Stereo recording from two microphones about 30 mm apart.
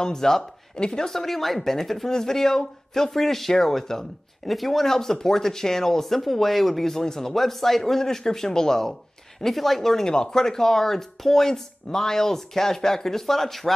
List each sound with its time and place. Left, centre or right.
0.0 s speech: centre
1.1 s speech: centre
4.5 s speech: centre
9.5 s speech: centre
10.0 s speech: left; by 13.7 s centre